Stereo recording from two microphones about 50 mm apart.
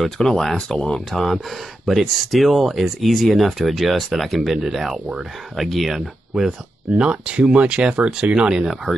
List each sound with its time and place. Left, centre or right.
0.2 s speech: centre
1.1 s speech: centre
6.9 s speech: centre